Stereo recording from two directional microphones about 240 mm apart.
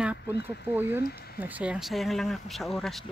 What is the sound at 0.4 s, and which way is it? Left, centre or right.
Speech, left.